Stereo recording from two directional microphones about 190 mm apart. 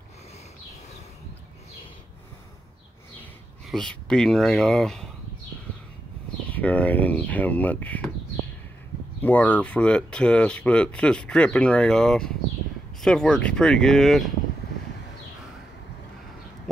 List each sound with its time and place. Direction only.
3.6 s speech: 5° left (ahead or behind)
6.5 s speech: 10° left (ahead or behind)
9.2 s speech: 10° left (ahead or behind)